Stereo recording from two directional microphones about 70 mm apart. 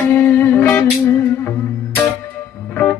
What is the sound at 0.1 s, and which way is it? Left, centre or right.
Music, left.